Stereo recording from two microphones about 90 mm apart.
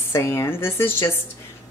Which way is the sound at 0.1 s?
30° left (ahead or behind).